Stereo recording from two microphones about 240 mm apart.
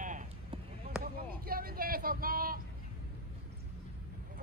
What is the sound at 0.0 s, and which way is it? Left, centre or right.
Chop, right.